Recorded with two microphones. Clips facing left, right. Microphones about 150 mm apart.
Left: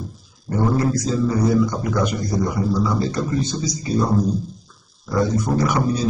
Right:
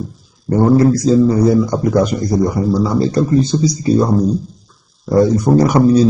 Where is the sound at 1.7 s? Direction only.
35° right (ahead or behind).